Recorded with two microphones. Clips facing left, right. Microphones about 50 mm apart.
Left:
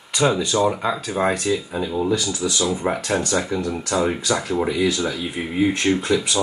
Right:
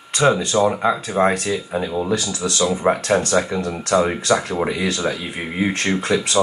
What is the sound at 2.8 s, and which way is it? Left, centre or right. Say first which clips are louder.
Speech: right 4 dB; right.